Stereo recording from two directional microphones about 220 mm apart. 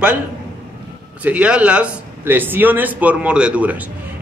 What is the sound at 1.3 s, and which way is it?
A man's voice, 5° right (ahead or behind).